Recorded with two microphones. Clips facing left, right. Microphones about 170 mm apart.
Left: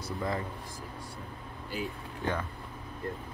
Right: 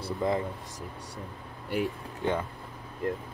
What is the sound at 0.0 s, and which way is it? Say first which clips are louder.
Speech: right 5 dB; 20° right (ahead or behind).